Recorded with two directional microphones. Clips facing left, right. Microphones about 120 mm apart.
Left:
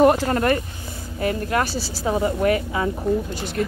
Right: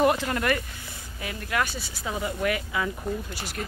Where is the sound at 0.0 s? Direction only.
40° left (ahead or behind).